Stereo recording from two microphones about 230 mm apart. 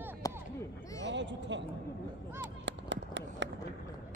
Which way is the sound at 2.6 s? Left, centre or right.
Right.